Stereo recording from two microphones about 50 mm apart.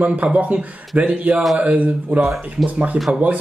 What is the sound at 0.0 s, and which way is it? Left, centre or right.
Speech, right.